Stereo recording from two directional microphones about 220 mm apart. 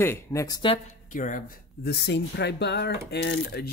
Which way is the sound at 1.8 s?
50° left (ahead or behind).